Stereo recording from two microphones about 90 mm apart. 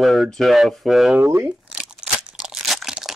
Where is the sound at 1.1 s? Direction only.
25° right (ahead or behind).